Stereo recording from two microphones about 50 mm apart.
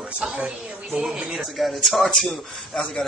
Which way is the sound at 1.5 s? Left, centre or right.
Centre.